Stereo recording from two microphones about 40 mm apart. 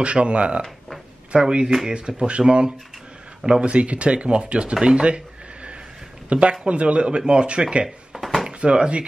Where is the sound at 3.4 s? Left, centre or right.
Right.